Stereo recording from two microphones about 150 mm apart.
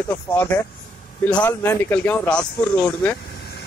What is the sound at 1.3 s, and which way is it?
A man's voice, 5° left (ahead or behind).